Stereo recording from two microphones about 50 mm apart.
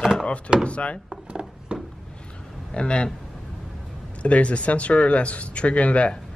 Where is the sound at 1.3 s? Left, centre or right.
Centre.